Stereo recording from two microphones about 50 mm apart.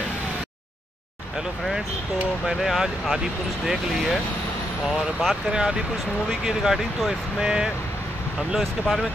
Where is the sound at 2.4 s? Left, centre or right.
Centre.